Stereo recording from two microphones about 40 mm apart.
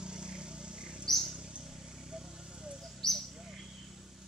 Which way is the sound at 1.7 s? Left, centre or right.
Centre.